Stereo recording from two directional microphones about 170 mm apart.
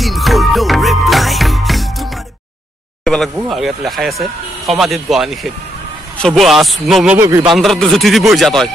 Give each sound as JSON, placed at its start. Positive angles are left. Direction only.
{"t": 0.0, "sound": "music", "side_deg": 0}
{"t": 3.0, "sound": "a sound", "side_deg": 0}
{"t": 3.3, "sound": "speech", "side_deg": 0}
{"t": 7.2, "sound": "a man's voice", "side_deg": -20}
{"t": 7.5, "sound": "speech", "side_deg": 0}